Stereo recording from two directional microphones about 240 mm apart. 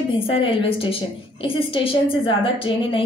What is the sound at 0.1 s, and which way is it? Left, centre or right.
A woman's voice, left.